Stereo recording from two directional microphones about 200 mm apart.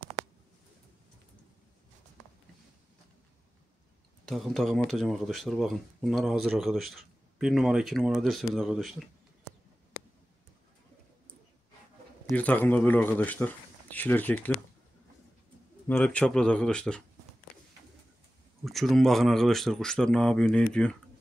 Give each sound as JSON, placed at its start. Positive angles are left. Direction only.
{"t": 4.3, "sound": "speech", "side_deg": 0}
{"t": 12.3, "sound": "speech", "side_deg": 5}
{"t": 15.9, "sound": "speech", "side_deg": 5}
{"t": 18.6, "sound": "speech", "side_deg": 0}